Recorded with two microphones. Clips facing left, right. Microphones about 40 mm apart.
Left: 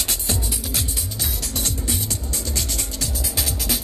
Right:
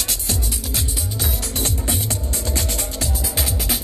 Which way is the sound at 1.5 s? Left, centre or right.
Right.